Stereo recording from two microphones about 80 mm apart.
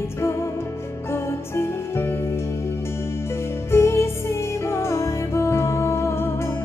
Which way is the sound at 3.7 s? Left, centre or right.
Left.